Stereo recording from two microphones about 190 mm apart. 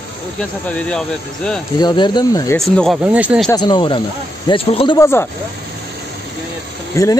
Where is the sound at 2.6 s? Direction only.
Centre (ahead or behind).